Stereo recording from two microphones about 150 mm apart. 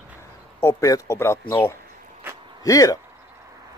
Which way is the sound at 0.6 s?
20° left (ahead or behind).